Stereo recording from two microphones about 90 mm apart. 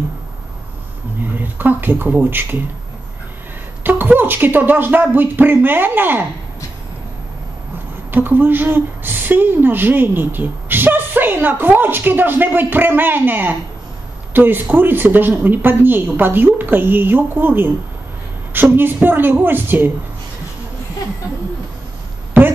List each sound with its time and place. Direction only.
1.6 s speech: 20° right (ahead or behind)
3.8 s speech: 20° right (ahead or behind)
8.1 s speech: 20° right (ahead or behind)